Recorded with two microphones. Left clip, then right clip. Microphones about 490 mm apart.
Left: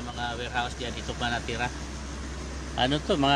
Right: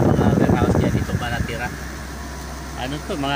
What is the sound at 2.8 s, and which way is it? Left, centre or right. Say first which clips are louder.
Speech: left 2 dB; left.